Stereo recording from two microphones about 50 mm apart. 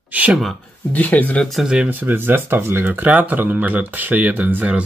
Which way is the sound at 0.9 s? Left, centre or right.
Left.